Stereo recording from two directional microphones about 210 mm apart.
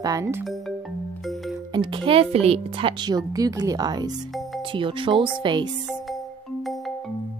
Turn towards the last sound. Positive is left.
turn(degrees=-20)  # may be behind; listen again after turning